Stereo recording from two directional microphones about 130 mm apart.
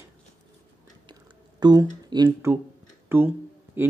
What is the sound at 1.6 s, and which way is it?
Speech, 35° right (ahead or behind).